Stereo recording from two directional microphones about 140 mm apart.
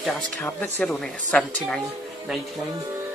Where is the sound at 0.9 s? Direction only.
5° left (ahead or behind).